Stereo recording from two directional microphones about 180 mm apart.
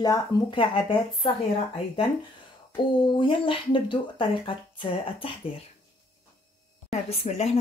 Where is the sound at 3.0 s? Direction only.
25° left (ahead or behind).